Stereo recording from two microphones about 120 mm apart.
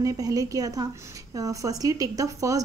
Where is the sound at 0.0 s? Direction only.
30° right (ahead or behind).